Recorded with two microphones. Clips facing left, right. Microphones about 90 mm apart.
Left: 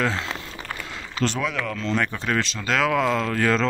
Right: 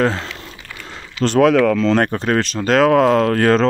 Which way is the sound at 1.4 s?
90° right.